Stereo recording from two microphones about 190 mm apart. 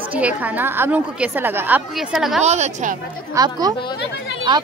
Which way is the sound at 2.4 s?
35° right (ahead or behind).